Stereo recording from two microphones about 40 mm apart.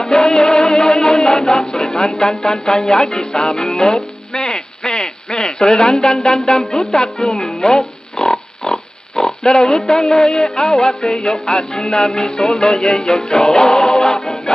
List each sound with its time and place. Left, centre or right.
0.0 s music: centre
1.7 s speech: centre
2.6 s music: centre
4.3 s a sound: centre
6.8 s music: centre
7.6 s pig: centre
9.7 s music: centre